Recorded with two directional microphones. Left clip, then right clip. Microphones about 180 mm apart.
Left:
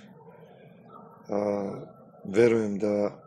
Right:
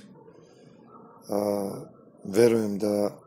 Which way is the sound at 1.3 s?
40° right (ahead or behind).